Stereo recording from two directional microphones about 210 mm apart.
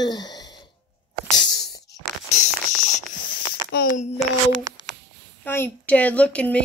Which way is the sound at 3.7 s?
35° left (ahead or behind).